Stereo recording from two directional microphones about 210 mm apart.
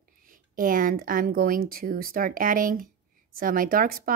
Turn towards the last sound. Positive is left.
turn(degrees=-45)  # may be behind; listen again after turning